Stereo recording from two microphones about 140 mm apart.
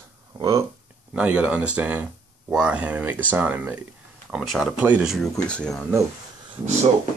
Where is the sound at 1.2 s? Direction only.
10° right (ahead or behind).